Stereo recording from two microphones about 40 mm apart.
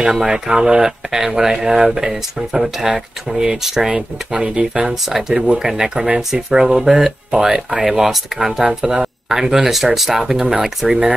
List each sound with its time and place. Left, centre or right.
0.1 s speech: centre
5.1 s speech: centre
8.6 s speech: centre